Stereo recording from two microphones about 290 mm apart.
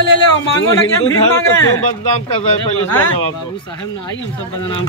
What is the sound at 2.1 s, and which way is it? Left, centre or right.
Speech, left.